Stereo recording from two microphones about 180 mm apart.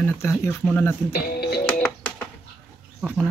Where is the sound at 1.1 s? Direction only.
60° left (ahead or behind).